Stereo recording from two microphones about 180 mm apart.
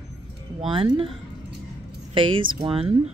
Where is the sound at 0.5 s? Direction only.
30° right (ahead or behind).